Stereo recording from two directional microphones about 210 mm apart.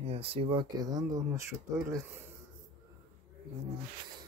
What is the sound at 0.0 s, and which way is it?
Speech, 30° right (ahead or behind).